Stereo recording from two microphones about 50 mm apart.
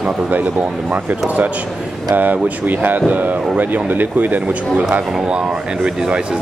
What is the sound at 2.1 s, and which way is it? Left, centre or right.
Speech, right.